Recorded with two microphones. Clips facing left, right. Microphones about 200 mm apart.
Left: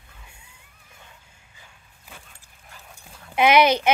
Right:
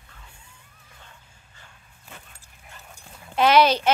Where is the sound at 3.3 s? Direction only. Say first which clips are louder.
Left 1 dB; 15° left (ahead or behind).